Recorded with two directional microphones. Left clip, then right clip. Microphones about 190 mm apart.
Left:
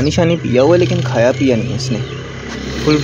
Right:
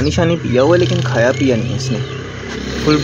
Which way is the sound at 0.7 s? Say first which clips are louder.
Left 1 dB; 35° right (ahead or behind).